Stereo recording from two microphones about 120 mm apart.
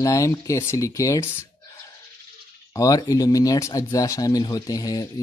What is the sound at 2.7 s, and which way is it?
Speech, 30° left (ahead or behind).